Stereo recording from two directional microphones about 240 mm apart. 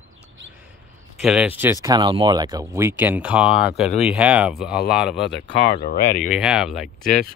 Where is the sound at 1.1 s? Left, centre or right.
Centre.